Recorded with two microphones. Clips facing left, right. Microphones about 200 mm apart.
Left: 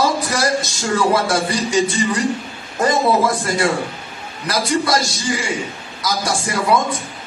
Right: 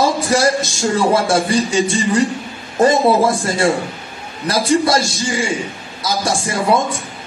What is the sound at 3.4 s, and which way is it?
Speech, 25° right (ahead or behind).